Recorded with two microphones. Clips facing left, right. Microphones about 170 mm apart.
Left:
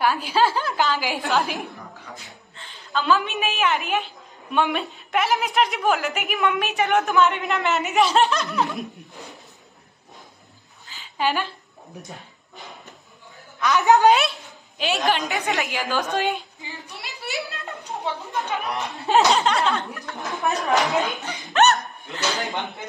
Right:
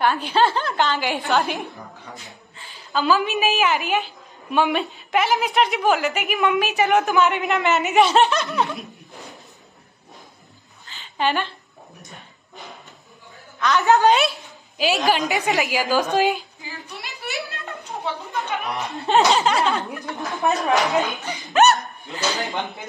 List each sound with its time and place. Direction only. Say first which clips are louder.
0.0 s a woman's voice: right 1 dB; 5° left (ahead or behind)
10.9 s a sound: right 1 dB; 5° left (ahead or behind)
12.0 s speech: left 4 dB; centre (ahead or behind)
13.6 s a woman's voice: even; 15° left (ahead or behind)
14.8 s a woman's voice: right 3 dB; 5° right (ahead or behind)
18.3 s a woman's voice: even; centre (ahead or behind)